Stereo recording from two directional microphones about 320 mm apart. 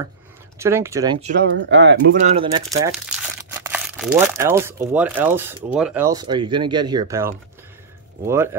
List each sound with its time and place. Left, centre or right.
0.6 s speech: centre
1.2 s speech: right
2.2 s speech: centre